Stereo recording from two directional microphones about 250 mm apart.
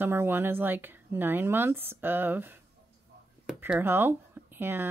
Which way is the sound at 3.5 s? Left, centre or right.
Centre.